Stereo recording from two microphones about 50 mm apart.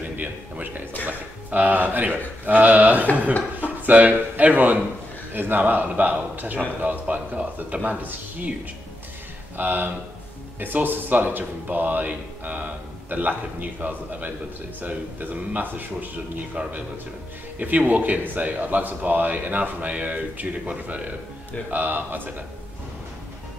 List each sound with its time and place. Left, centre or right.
0.0 s a sound: right
1.0 s a man's voice: right
9.6 s a man's voice: right